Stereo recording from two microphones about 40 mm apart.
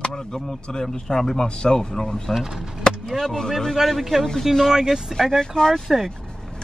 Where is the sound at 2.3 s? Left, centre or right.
Centre.